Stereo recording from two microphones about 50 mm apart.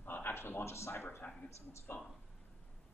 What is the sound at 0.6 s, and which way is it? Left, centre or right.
Speech, left.